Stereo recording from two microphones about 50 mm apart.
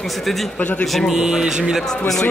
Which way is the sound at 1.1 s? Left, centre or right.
Centre.